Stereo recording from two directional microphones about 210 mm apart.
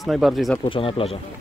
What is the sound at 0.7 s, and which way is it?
Speech, 25° left (ahead or behind).